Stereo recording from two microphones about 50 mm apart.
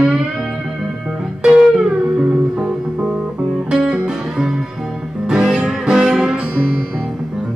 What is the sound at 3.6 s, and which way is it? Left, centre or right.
Music, centre.